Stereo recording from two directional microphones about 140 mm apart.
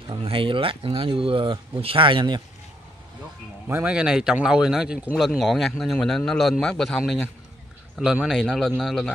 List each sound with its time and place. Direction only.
0.1 s speech: 40° right (ahead or behind)
3.6 s speech: 10° right (ahead or behind)